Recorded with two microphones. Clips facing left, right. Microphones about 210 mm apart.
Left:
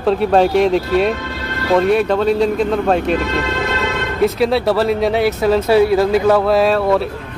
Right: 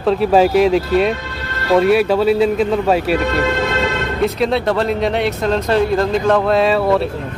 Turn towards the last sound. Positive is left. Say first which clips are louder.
# even
turn(degrees=0)  # may be behind; listen again after turning